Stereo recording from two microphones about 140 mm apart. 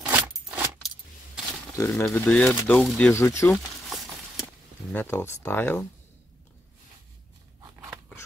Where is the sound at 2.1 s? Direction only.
10° left (ahead or behind).